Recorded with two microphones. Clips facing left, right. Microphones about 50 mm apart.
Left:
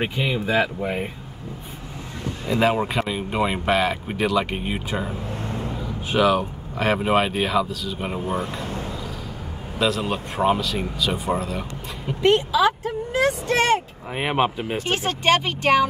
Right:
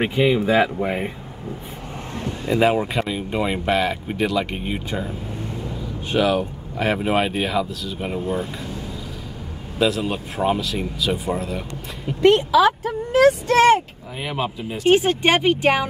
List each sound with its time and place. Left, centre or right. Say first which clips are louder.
0.0 s speech: right 6 dB; centre
2.6 s speech: right 1 dB; centre
6.1 s speech: even; centre
9.8 s speech: right 2 dB; centre
12.2 s speech: right 3 dB; right
14.1 s speech: left 4 dB; left
14.9 s speech: right 5 dB; centre